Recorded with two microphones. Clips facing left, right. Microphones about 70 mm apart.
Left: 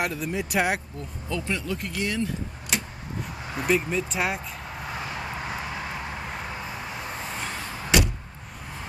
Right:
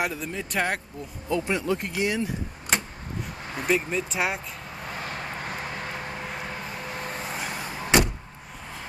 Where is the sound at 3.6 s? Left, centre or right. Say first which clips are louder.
Left 1 dB; centre.